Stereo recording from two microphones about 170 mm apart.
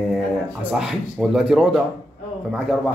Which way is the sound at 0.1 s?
5° right (ahead or behind).